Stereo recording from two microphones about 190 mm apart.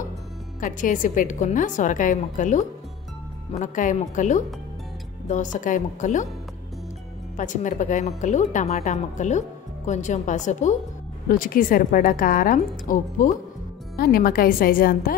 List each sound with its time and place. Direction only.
0.6 s a woman's voice: 45° left (ahead or behind)
7.3 s a woman's voice: 40° left (ahead or behind)